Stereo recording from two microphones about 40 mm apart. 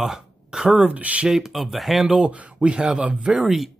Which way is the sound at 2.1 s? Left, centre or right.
Right.